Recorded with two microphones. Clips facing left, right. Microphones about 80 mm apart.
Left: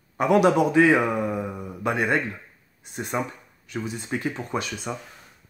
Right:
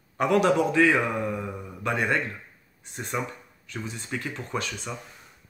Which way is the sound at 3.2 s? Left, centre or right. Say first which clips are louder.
Left 3 dB; left.